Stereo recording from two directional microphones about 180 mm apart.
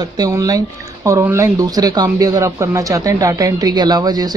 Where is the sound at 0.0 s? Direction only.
20° right (ahead or behind).